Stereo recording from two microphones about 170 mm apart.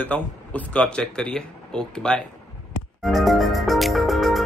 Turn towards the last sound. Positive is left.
turn(degrees=0)  # may be behind; listen again after turning